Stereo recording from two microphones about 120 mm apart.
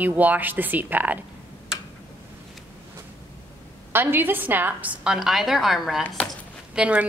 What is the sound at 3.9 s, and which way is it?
A woman's voice, 15° right (ahead or behind).